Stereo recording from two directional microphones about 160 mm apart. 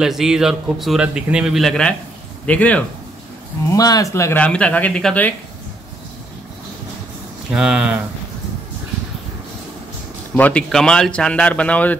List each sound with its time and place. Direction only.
0.0 s a man's voice: 5° right (ahead or behind)
3.6 s speech: 20° left (ahead or behind)
7.5 s a man's voice: 5° right (ahead or behind)
10.3 s speech: 10° left (ahead or behind)